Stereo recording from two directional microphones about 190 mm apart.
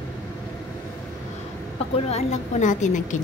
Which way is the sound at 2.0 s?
35° left (ahead or behind).